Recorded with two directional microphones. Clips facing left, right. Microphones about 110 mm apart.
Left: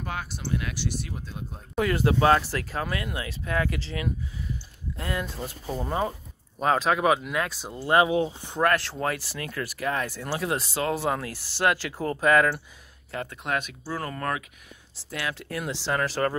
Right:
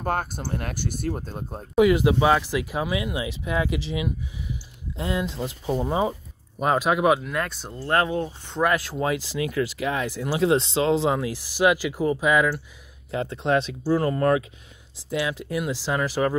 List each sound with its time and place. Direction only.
0.0 s speech: 45° right (ahead or behind)
1.8 s speech: 15° right (ahead or behind); by 8.6 s 10° left (ahead or behind)
8.6 s speech: 10° right (ahead or behind)
13.1 s speech: 25° right (ahead or behind)
15.0 s speech: 20° right (ahead or behind)